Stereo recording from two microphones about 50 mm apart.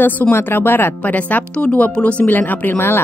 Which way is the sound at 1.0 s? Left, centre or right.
Left.